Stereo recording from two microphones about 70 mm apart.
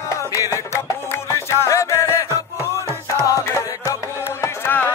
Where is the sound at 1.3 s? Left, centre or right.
Left.